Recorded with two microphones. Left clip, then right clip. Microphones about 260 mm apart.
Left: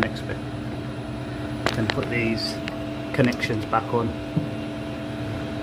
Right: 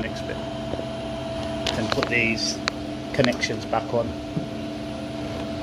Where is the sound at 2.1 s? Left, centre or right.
Centre.